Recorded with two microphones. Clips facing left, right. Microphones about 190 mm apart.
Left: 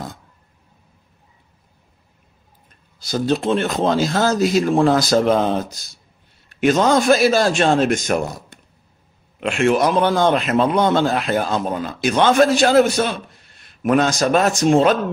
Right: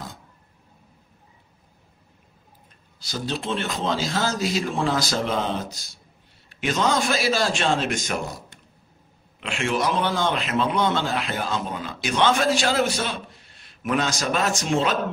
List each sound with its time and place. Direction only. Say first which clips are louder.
3.1 s a man's voice: left 9 dB; 50° left (ahead or behind)
6.6 s a man's voice: left 8 dB; 45° left (ahead or behind)